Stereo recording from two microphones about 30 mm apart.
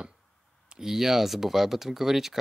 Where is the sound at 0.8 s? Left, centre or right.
Centre.